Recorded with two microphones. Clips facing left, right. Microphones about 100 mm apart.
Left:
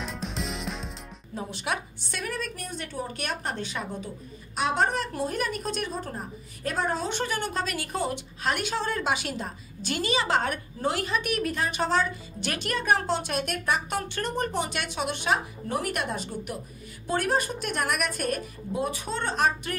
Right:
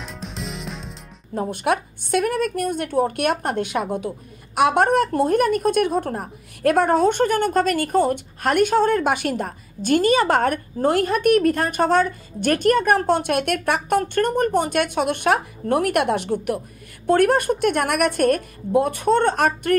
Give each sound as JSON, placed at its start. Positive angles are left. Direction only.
{"t": 0.0, "sound": "music", "side_deg": 0}
{"t": 1.3, "sound": "a woman's voice", "side_deg": -50}